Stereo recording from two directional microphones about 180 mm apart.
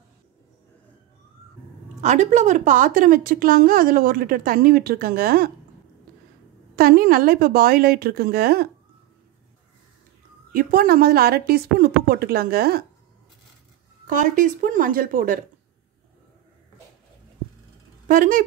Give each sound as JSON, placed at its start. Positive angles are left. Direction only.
{"t": 2.0, "sound": "a woman's voice", "side_deg": -40}
{"t": 6.7, "sound": "speech", "side_deg": -55}
{"t": 10.5, "sound": "speech", "side_deg": -50}
{"t": 14.0, "sound": "a woman's voice", "side_deg": -45}
{"t": 18.0, "sound": "speech", "side_deg": -50}